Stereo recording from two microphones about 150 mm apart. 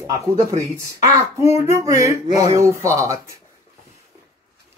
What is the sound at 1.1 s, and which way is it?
Speech, 20° right (ahead or behind).